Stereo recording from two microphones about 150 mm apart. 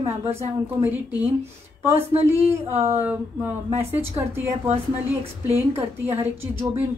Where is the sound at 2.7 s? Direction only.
40° right (ahead or behind).